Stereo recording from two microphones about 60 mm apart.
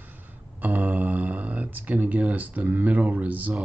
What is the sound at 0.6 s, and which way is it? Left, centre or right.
Speech, right.